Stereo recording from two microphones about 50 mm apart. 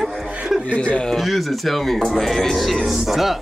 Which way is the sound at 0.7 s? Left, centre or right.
Left.